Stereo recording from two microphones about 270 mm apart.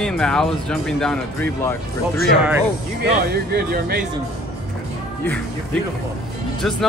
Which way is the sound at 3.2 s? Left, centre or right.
Right.